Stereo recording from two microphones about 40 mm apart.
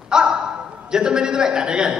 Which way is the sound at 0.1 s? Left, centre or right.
Centre.